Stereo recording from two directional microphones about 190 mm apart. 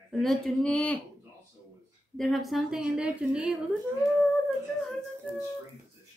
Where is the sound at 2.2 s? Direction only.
Centre (ahead or behind).